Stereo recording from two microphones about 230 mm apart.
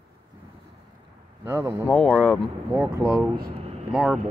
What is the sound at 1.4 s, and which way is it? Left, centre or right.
Speech, centre.